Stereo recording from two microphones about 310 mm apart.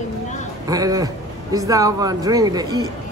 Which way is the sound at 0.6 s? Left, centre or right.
Centre.